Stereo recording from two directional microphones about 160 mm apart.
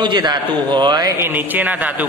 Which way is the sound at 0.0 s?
25° right (ahead or behind).